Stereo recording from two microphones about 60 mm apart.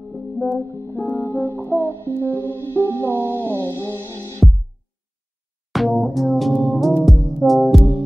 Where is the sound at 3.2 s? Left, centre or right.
Right.